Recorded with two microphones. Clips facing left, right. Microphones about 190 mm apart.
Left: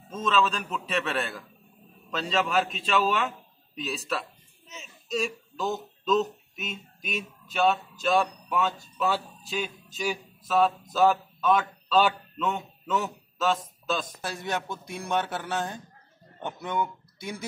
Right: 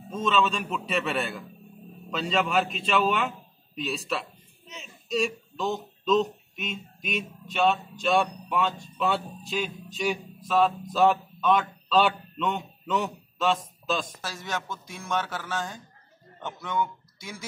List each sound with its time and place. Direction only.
0.1 s a man's voice: centre (ahead or behind)
14.2 s speech: 55° left (ahead or behind)
15.2 s speech: 20° left (ahead or behind)
17.2 s speech: 60° left (ahead or behind)